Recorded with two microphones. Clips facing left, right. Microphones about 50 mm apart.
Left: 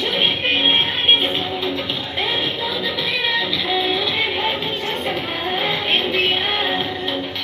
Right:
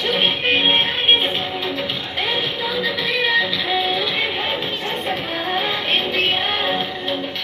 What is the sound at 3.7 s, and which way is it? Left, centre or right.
Music, right.